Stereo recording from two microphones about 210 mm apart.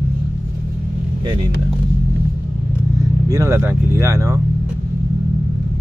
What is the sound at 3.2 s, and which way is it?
Speech, 15° right (ahead or behind).